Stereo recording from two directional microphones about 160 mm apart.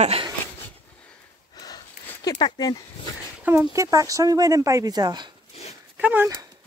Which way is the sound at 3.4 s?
15° right (ahead or behind).